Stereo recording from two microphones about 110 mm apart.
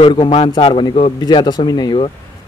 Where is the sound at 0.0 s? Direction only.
50° left (ahead or behind).